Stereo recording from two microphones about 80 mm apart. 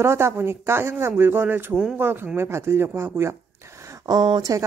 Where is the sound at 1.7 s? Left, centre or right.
Centre.